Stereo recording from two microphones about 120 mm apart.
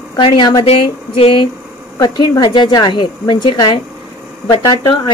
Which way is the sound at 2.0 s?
35° left (ahead or behind).